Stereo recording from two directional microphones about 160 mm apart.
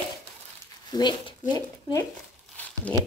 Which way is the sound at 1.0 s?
25° left (ahead or behind).